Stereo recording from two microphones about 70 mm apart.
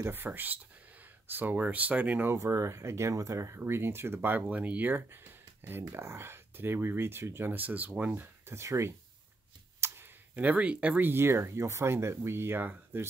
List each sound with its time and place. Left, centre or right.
0.0 s speech: right
2.2 s speech: right
4.4 s speech: right
8.5 s speech: right
9.8 s clicking: right
10.3 s speech: centre
11.1 s speech: right